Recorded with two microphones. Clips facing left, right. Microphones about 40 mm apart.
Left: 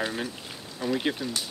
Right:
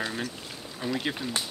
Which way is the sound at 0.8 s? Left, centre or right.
Right.